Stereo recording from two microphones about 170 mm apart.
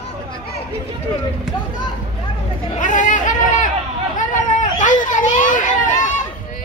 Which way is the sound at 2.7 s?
50° left (ahead or behind).